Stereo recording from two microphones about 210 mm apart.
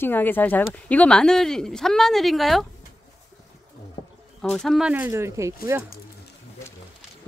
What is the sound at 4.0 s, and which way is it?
Bird, 35° left (ahead or behind).